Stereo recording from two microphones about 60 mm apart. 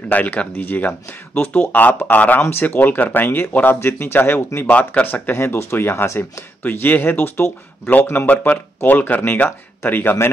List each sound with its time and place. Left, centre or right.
0.1 s speech: left
4.6 s speech: left
5.3 s speech: left